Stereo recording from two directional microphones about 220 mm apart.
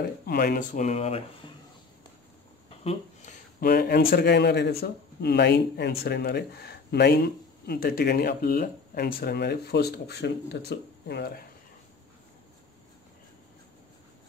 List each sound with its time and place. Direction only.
0.3 s speech: 40° left (ahead or behind)
2.8 s a sound: 30° left (ahead or behind)
3.6 s speech: 45° left (ahead or behind)